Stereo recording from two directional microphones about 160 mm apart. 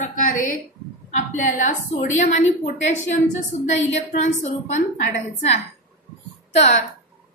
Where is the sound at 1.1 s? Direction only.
50° left (ahead or behind).